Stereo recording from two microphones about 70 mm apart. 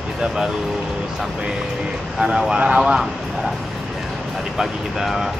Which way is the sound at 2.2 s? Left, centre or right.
Centre.